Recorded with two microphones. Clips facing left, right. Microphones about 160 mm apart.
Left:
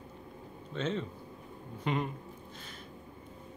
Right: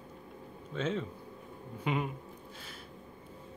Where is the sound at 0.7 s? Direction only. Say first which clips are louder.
Even; 5° right (ahead or behind).